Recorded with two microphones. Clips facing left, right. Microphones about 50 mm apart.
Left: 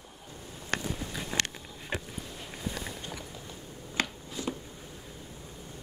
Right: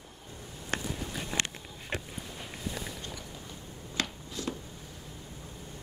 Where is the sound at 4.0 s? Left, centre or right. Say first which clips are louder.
Left 2 dB; centre.